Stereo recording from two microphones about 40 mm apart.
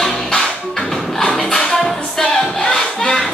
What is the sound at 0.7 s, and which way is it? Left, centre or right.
Music, centre.